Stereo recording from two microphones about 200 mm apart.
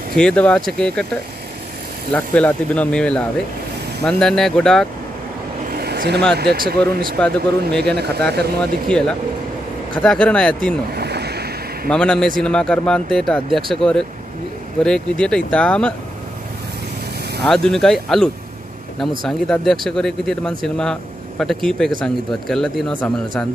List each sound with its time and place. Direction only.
0.1 s a man's voice: 5° left (ahead or behind)
2.1 s a man's voice: 5° left (ahead or behind)
5.7 s vehicle: 50° right (ahead or behind)
6.3 s speech: 50° right (ahead or behind)
8.8 s a man's voice: 5° left (ahead or behind)
11.0 s boat: 55° right (ahead or behind)
11.9 s a man's voice: 5° left (ahead or behind)
17.4 s a man's voice: centre (ahead or behind)